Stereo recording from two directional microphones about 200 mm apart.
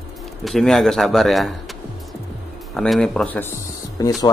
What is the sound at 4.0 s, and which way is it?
Speech, 20° left (ahead or behind).